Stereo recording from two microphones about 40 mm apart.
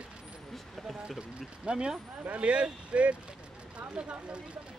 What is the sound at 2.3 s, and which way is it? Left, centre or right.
A man's voice, right.